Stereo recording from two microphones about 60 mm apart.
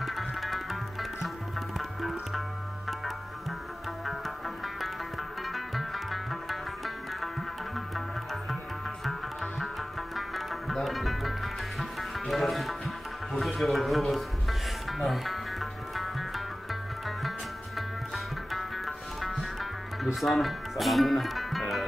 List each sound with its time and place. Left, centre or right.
0.0 s music: centre
1.8 s music: centre
5.5 s music: centre
9.0 s music: centre
17.7 s music: centre
20.2 s speech: centre